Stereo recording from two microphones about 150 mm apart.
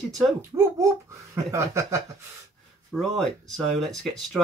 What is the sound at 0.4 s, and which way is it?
Speech, 20° right (ahead or behind).